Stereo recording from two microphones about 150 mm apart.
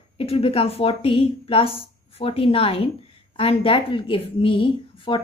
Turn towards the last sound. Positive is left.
turn(degrees=35)  # may be behind; listen again after turning